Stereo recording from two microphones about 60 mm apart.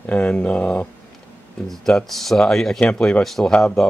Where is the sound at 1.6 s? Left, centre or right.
Centre.